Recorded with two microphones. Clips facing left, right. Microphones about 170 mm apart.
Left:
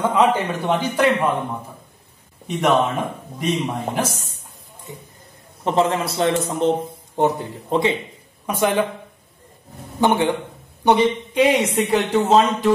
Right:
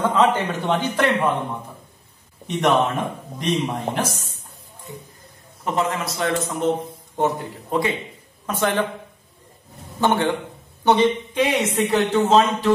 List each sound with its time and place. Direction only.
0.0 s speech: 10° left (ahead or behind)
2.5 s a man's voice: centre (ahead or behind)
5.6 s a man's voice: 30° left (ahead or behind)
8.5 s speech: 10° left (ahead or behind)
9.9 s speech: 15° left (ahead or behind)